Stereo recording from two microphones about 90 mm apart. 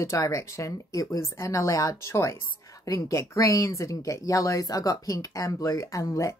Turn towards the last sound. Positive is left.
turn(degrees=35)  # may be behind; listen again after turning